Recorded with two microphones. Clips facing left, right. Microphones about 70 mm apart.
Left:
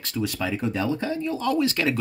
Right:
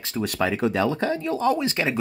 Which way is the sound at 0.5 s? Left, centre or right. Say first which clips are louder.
Right 3 dB; right.